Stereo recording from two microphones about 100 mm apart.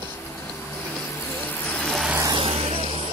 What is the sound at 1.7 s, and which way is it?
Vehicle, 5° left (ahead or behind).